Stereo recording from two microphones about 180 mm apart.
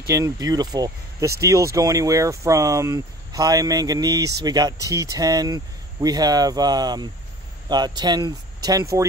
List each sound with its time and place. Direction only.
0.1 s speech: 20° right (ahead or behind)